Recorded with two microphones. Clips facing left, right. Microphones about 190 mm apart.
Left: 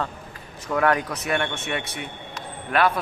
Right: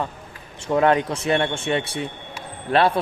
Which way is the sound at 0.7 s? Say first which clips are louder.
Right 4 dB; 25° right (ahead or behind).